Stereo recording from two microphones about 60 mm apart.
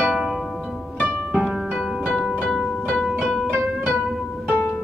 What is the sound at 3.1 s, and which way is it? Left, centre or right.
Music, centre.